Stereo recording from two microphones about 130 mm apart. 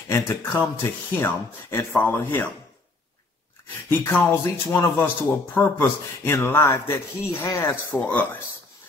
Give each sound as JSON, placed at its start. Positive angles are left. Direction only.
{"t": 0.1, "sound": "speech", "side_deg": 15}
{"t": 3.9, "sound": "speech", "side_deg": 15}